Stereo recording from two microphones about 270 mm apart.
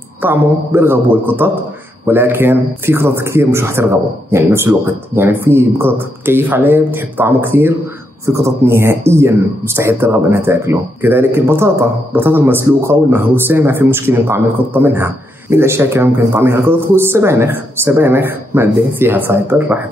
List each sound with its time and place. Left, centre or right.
0.2 s speech: centre